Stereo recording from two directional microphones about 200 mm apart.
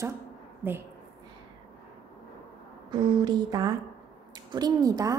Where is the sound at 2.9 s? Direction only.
20° right (ahead or behind).